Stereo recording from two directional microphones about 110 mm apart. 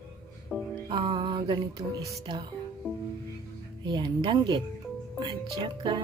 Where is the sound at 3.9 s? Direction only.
45° right (ahead or behind).